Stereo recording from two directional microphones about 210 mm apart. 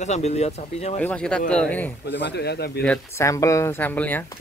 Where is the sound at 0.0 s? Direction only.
30° left (ahead or behind).